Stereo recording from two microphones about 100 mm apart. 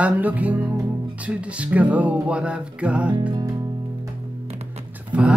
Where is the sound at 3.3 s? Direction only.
45° right (ahead or behind).